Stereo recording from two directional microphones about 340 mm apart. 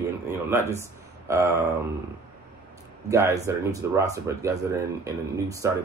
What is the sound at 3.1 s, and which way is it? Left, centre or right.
Speech, centre.